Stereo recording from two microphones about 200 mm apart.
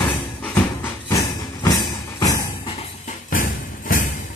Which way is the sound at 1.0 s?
15° left (ahead or behind).